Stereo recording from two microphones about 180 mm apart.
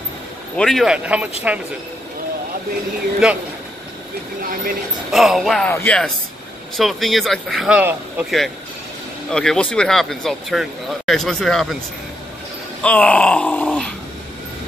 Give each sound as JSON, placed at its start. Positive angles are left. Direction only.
{"t": 0.6, "sound": "speech", "side_deg": 0}
{"t": 3.2, "sound": "speech", "side_deg": -5}
{"t": 4.4, "sound": "speech", "side_deg": -50}
{"t": 5.1, "sound": "speech", "side_deg": 0}
{"t": 5.7, "sound": "groan", "side_deg": 10}
{"t": 6.8, "sound": "speech", "side_deg": 0}
{"t": 12.8, "sound": "groan", "side_deg": 5}